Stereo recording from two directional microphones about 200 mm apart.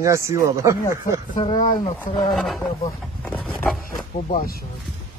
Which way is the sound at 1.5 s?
40° left (ahead or behind).